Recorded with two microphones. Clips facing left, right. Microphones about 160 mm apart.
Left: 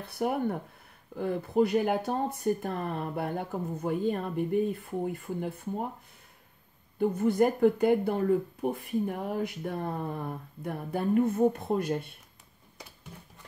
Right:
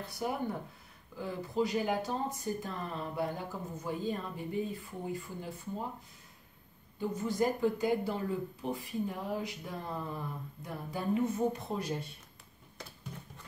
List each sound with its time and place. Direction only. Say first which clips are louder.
0.0 s speech: left 6 dB; 60° left (ahead or behind)
7.0 s speech: left 7 dB; 60° left (ahead or behind)